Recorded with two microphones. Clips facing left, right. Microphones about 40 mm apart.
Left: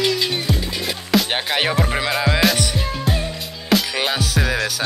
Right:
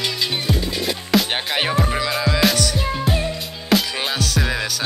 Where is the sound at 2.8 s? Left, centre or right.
Centre.